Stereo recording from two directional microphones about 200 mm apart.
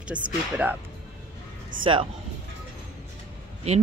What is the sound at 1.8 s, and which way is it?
Speech, 25° right (ahead or behind).